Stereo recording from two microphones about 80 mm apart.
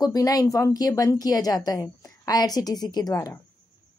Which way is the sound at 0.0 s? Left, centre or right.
Left.